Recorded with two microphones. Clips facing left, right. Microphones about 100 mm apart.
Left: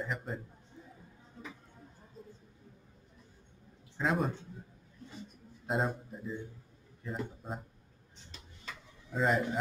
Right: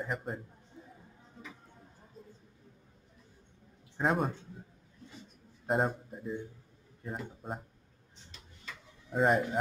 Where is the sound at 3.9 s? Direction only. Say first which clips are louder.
Right 2 dB; 50° right (ahead or behind).